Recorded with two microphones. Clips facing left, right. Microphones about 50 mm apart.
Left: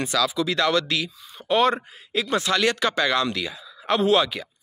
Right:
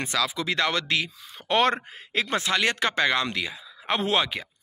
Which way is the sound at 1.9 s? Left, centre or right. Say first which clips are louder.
Left 2 dB; right.